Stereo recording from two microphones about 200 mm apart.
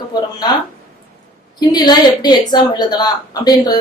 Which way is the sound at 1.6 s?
20° left (ahead or behind).